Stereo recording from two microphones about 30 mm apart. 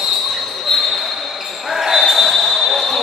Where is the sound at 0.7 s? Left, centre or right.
Centre.